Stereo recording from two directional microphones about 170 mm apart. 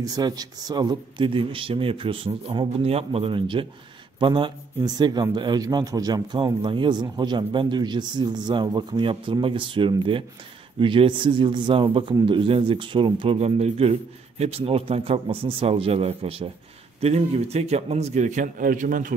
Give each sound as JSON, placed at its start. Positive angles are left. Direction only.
{"t": 0.0, "sound": "a man's voice", "side_deg": -20}